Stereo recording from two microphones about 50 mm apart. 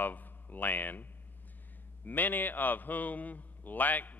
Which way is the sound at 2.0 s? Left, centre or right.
Left.